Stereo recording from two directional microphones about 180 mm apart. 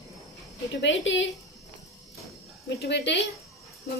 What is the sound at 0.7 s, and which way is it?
Speech, 85° left.